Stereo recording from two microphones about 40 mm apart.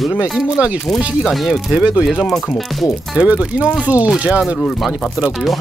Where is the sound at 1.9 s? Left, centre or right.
Right.